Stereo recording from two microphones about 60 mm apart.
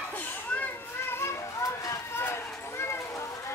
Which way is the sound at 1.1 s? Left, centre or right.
Left.